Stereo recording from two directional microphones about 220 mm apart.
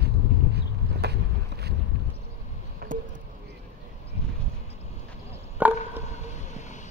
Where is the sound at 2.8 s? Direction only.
45° right (ahead or behind).